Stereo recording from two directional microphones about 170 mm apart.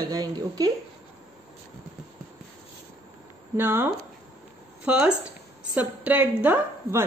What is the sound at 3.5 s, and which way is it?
Speech, 10° right (ahead or behind).